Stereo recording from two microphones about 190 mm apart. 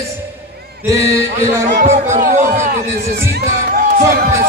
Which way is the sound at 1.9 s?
40° right (ahead or behind).